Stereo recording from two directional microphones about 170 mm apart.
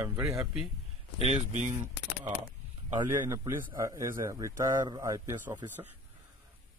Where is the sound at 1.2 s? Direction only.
40° right (ahead or behind).